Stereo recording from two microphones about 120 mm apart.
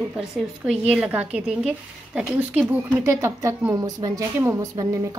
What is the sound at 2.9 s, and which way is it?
A woman's voice, 20° right (ahead or behind).